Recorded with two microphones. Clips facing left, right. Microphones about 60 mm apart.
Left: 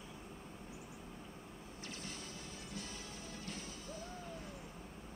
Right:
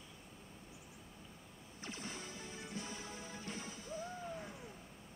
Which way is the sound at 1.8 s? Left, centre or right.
Right.